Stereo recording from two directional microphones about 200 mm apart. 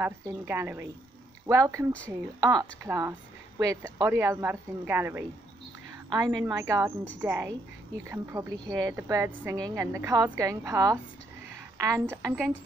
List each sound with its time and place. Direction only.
0.0 s a woman's voice: 10° right (ahead or behind)